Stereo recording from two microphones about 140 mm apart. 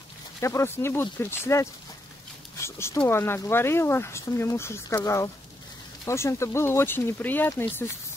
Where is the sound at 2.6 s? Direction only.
20° left (ahead or behind).